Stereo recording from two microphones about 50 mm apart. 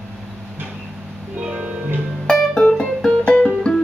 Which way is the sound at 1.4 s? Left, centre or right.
Right.